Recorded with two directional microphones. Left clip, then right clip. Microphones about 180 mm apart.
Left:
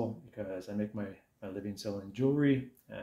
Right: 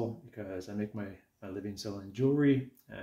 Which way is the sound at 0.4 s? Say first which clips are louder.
Left 1 dB; 15° left (ahead or behind).